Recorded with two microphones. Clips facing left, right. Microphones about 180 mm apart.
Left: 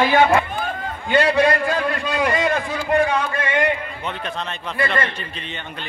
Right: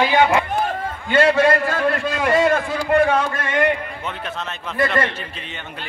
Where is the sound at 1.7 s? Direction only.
45° right (ahead or behind).